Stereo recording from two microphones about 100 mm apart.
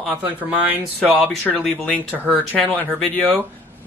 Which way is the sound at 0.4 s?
15° right (ahead or behind).